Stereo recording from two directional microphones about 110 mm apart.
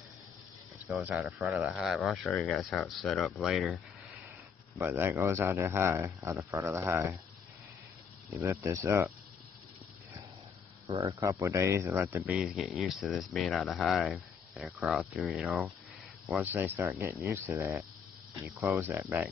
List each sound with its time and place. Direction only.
0.9 s speech: 10° right (ahead or behind)
4.8 s speech: 20° right (ahead or behind)
8.6 s speech: 25° right (ahead or behind)
11.1 s speech: 30° right (ahead or behind); by 15.6 s 5° right (ahead or behind)
16.5 s speech: 20° right (ahead or behind)